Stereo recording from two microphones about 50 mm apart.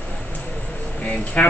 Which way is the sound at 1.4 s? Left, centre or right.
Left.